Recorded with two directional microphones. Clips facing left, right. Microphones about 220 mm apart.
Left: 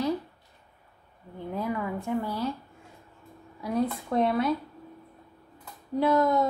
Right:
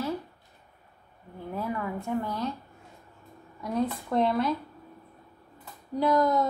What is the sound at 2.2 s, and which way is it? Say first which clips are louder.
Speech: left 1 dB; 10° left (ahead or behind).